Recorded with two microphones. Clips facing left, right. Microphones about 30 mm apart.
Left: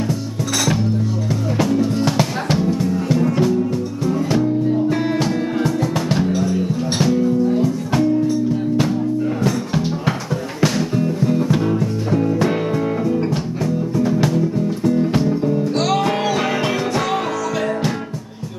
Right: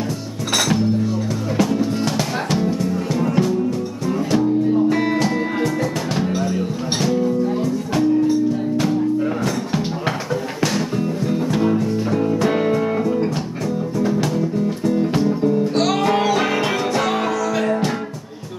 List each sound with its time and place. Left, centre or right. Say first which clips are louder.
1.6 s music: left 1 dB; centre
2.0 s music: left 2 dB; centre
7.0 s music: left 2 dB; centre
10.6 s music: left 4 dB; centre